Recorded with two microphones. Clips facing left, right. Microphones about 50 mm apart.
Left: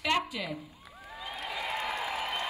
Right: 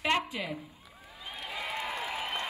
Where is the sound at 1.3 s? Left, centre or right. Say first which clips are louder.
Left 2 dB; left.